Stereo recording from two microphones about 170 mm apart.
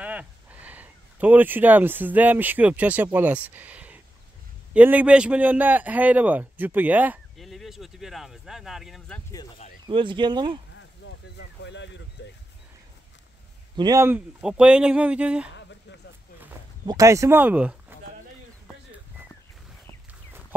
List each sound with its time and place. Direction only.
0.0 s a man's voice: 10° right (ahead or behind)
9.8 s speech: 30° right (ahead or behind)
10.8 s a sound: 90° left
13.7 s speech: 25° right (ahead or behind)
14.0 s a man's voice: 5° right (ahead or behind)
16.8 s a man's voice: 20° right (ahead or behind)